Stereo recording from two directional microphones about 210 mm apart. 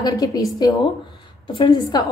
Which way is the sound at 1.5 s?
20° left (ahead or behind).